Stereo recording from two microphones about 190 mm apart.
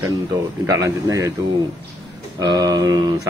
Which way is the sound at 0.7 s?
20° right (ahead or behind).